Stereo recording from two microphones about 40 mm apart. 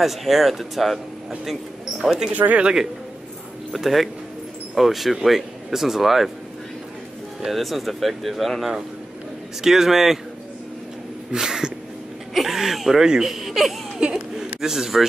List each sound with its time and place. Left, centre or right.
0.0 s speech: centre
2.0 s speech: centre
2.3 s speech: right
2.6 s speech: centre
7.4 s speech: centre
11.3 s speech: centre
12.4 s a sound: centre
13.0 s speech: centre
14.1 s a sound: centre